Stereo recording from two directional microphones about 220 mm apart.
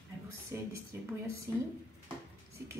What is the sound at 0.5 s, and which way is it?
A woman's voice, 10° right (ahead or behind).